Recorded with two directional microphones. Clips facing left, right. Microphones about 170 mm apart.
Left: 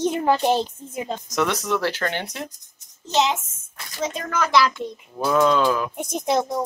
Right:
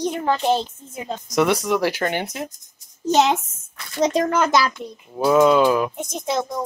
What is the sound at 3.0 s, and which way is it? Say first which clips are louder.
Speech: right 4 dB; 40° right (ahead or behind).